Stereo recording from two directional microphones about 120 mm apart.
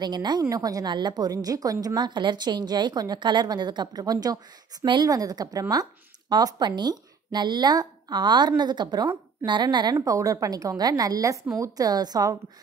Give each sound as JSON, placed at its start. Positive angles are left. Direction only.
{"t": 0.0, "sound": "a woman's voice", "side_deg": -35}
{"t": 9.9, "sound": "a woman's voice", "side_deg": -25}